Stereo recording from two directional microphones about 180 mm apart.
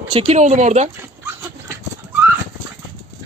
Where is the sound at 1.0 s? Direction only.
10° right (ahead or behind).